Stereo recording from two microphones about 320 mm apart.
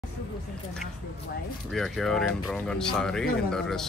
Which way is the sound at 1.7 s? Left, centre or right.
Centre.